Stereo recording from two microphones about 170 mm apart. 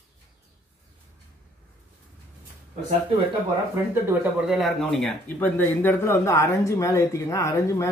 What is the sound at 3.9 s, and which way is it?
Speech, 15° right (ahead or behind).